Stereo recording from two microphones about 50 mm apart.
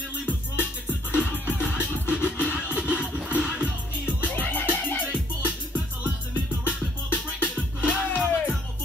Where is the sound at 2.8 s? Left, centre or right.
Right.